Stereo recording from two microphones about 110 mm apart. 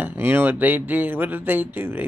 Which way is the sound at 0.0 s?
20° right (ahead or behind).